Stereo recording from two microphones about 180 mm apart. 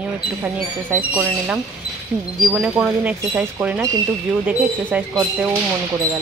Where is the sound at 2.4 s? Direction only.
5° right (ahead or behind).